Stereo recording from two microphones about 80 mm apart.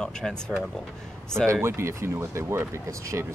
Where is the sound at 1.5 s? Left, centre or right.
Right.